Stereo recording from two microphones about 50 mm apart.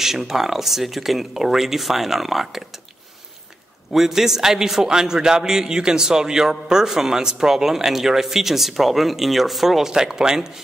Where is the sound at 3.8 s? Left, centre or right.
Centre.